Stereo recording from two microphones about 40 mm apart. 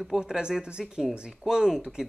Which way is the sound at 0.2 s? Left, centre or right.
Centre.